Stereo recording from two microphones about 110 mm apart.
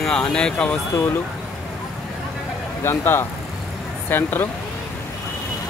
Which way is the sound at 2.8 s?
20° left (ahead or behind).